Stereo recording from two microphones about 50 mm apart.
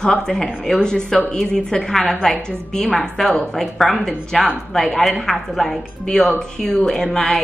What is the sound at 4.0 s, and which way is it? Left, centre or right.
A woman's voice, centre.